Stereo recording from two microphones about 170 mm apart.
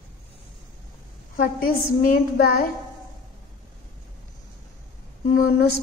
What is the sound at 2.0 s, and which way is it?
Child singing, 65° left (ahead or behind).